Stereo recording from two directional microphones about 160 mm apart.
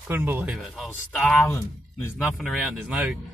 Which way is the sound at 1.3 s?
15° left (ahead or behind).